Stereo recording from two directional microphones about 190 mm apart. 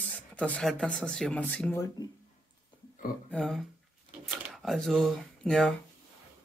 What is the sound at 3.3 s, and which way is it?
Speech, centre (ahead or behind).